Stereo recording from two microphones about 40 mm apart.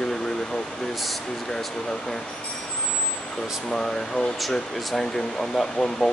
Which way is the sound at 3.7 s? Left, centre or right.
Centre.